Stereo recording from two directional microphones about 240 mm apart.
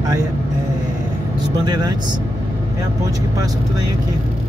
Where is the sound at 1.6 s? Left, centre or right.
Centre.